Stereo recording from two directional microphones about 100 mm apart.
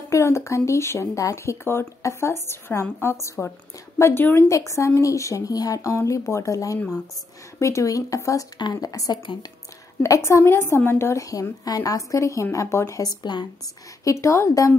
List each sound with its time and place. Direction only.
0.1 s a woman's voice: 30° left (ahead or behind)
8.5 s a woman's voice: 50° left (ahead or behind)
8.9 s a woman's voice: 40° left (ahead or behind)
9.2 s a woman's voice: 50° left (ahead or behind)
10.0 s a woman's voice: 30° left (ahead or behind)
14.0 s speech: 30° left (ahead or behind)